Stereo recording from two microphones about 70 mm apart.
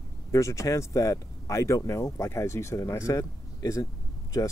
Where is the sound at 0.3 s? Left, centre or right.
Left.